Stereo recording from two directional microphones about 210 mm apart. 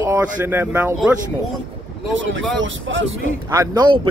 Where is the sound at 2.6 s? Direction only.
65° right (ahead or behind).